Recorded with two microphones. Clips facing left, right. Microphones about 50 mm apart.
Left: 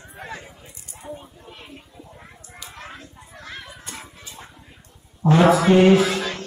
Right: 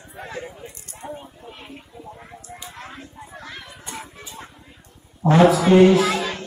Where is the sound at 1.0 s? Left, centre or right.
Centre.